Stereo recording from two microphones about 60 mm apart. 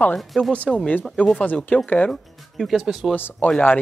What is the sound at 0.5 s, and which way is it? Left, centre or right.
Speech, left.